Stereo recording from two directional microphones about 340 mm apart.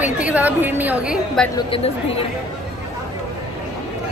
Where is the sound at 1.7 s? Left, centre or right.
Centre.